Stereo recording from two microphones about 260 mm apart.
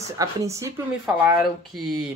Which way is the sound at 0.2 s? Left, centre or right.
Centre.